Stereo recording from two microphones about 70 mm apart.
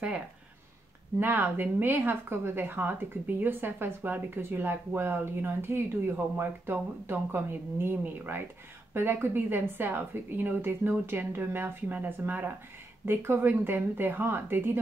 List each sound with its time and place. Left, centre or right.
1.2 s speech: right